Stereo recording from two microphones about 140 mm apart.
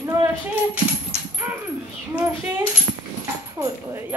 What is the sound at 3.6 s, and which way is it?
Speech, 20° right (ahead or behind).